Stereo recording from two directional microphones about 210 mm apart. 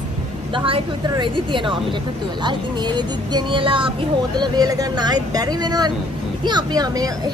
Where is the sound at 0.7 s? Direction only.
20° right (ahead or behind).